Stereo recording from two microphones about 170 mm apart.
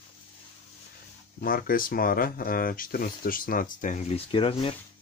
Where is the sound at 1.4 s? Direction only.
55° left (ahead or behind).